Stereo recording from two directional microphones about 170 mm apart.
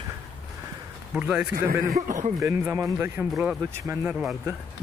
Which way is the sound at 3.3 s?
5° right (ahead or behind).